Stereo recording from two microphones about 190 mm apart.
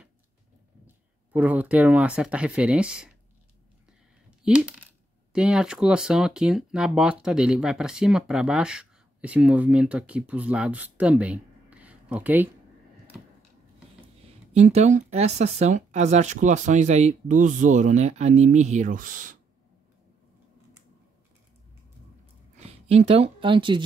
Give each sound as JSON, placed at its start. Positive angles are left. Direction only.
{"t": 0.8, "sound": "speech", "side_deg": -10}
{"t": 4.4, "sound": "speech", "side_deg": -5}
{"t": 14.5, "sound": "speech", "side_deg": -35}
{"t": 22.8, "sound": "speech", "side_deg": -30}